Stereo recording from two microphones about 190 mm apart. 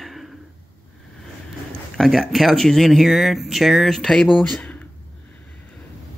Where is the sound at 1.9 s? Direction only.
Centre (ahead or behind).